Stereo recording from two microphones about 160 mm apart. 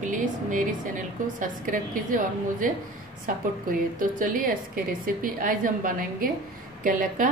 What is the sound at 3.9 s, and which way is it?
A woman's voice, 60° right (ahead or behind).